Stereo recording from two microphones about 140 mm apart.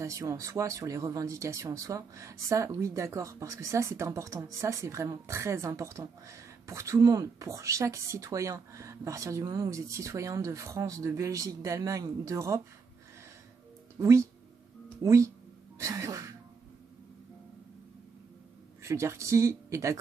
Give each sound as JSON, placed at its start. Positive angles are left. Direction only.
{"t": 0.0, "sound": "speech", "side_deg": -20}
{"t": 13.9, "sound": "speech", "side_deg": -20}
{"t": 18.8, "sound": "speech", "side_deg": -20}